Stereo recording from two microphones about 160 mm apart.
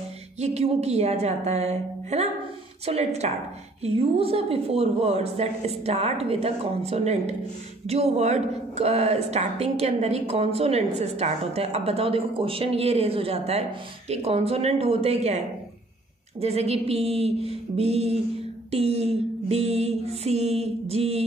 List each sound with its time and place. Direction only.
0.4 s a woman's voice: 45° right (ahead or behind)